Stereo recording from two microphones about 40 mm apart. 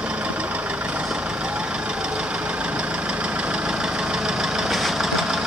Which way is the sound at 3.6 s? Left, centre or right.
Centre.